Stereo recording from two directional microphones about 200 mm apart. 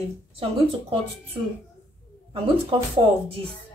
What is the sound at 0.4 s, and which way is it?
Speech, 30° right (ahead or behind).